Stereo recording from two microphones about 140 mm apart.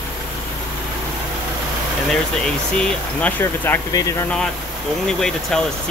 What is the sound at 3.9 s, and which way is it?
Speech, 25° left (ahead or behind).